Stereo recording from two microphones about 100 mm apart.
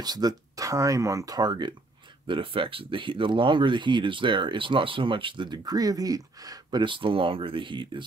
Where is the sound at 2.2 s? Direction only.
60° right (ahead or behind); by 6.8 s 40° right (ahead or behind).